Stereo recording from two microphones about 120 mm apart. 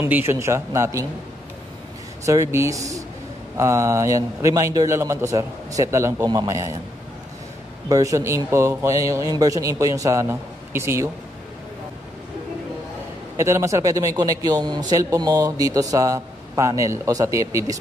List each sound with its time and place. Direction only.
0.0 s speech: 20° right (ahead or behind)
2.2 s speech: 25° right (ahead or behind)
7.9 s speech: 25° right (ahead or behind)
13.4 s speech: 25° right (ahead or behind)